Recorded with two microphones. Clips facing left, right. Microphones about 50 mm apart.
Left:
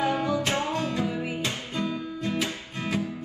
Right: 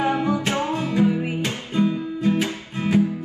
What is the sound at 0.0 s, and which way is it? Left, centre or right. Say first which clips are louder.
Music: right 4 dB; right.